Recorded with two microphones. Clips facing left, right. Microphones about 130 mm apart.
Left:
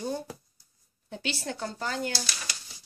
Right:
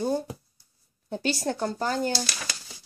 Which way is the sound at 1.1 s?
40° right (ahead or behind).